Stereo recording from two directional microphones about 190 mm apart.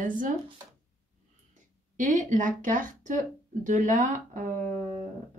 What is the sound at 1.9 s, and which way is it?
Speech, 40° right (ahead or behind).